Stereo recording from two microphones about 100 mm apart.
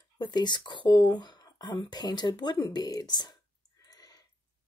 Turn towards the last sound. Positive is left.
turn(degrees=45)  # may be behind; listen again after turning